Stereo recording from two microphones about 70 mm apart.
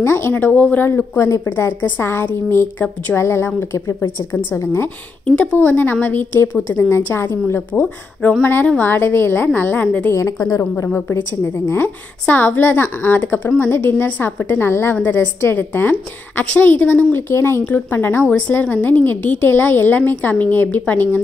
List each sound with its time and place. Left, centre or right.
0.0 s a woman's voice: left
1.1 s a woman's voice: left
5.2 s speech: centre
5.6 s a woman's voice: left
7.8 s a woman's voice: left
10.1 s a woman's voice: left
10.9 s a woman's voice: left